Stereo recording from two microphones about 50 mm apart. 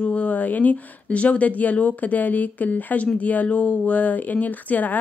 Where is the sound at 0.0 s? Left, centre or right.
Left.